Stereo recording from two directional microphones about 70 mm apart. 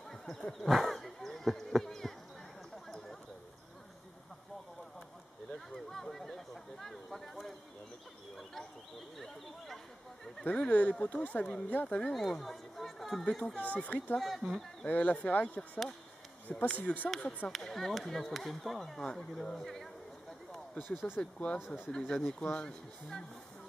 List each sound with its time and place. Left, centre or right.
0.1 s speech: centre
5.5 s speech: centre
10.4 s speech: centre
12.0 s speech: centre
13.8 s speech: left
14.1 s speech: centre
14.9 s speech: centre
17.5 s speech: centre
21.2 s speech: centre
21.5 s speech: centre
21.9 s speech: centre